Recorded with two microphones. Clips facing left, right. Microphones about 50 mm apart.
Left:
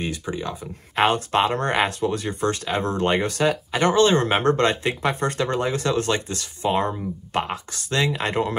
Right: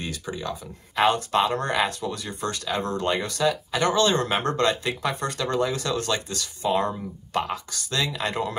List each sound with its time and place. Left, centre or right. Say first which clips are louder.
0.0 s speech: left 4 dB; left